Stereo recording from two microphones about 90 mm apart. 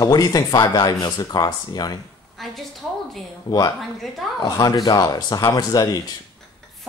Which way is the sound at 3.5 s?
45° left (ahead or behind).